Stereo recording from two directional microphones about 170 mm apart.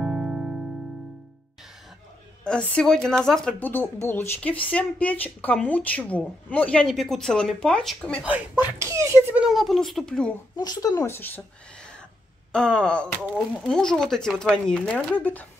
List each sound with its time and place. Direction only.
0.0 s music: 5° right (ahead or behind)
2.4 s speech: 5° left (ahead or behind)
8.2 s speech: 10° right (ahead or behind)
10.5 s speech: 25° left (ahead or behind)